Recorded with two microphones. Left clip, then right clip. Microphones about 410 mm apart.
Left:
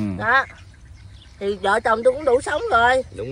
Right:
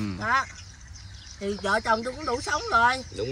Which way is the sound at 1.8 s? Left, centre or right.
Left.